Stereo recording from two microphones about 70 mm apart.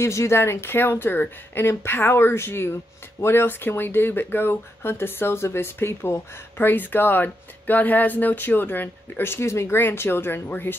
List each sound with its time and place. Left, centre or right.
0.0 s speech: left